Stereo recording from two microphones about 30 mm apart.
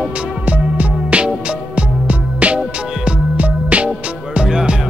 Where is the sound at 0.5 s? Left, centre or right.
Right.